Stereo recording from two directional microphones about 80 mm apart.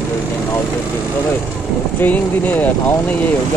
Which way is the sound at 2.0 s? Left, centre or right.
Centre.